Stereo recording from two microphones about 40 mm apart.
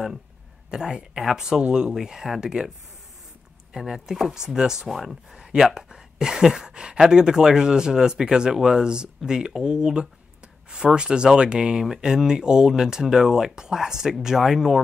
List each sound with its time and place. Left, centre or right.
0.7 s speech: centre
3.7 s speech: centre
5.4 s a sound: centre
6.7 s speech: right